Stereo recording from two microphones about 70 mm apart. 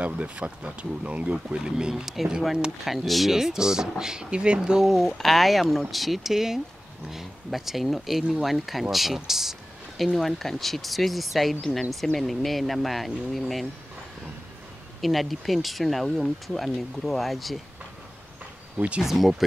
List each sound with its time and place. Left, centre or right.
0.0 s speech: centre
15.0 s speech: centre
18.8 s speech: centre
19.0 s speech: centre